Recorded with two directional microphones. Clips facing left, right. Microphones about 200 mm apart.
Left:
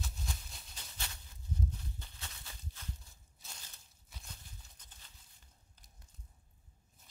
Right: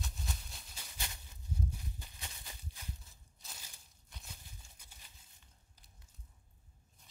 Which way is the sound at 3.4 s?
Centre (ahead or behind).